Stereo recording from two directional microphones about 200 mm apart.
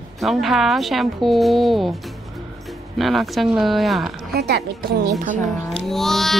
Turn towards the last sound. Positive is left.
turn(degrees=0)  # may be behind; listen again after turning